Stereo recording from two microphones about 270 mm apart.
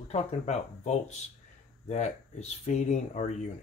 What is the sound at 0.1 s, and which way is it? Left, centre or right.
Speech, left.